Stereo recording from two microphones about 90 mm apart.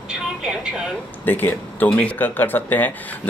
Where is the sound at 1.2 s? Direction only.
20° left (ahead or behind).